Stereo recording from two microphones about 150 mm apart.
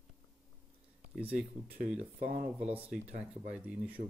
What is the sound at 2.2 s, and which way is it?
Speech, 60° right (ahead or behind).